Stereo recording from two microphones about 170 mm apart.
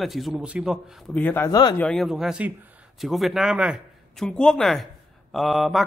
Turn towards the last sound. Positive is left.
turn(degrees=0)  # may be behind; listen again after turning